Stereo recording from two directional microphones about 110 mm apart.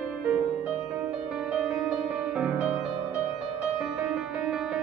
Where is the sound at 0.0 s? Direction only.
10° right (ahead or behind).